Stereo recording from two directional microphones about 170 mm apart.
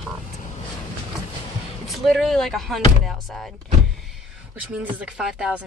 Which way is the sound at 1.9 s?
Centre (ahead or behind).